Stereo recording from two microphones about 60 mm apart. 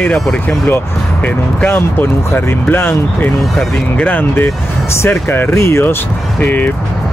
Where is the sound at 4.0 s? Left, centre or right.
Left.